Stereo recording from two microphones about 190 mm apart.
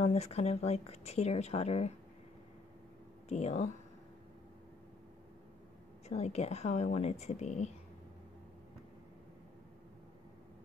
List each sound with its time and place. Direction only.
0.0 s a woman's voice: 35° left (ahead or behind)
3.3 s a woman's voice: 35° left (ahead or behind)
6.0 s a woman's voice: 35° left (ahead or behind)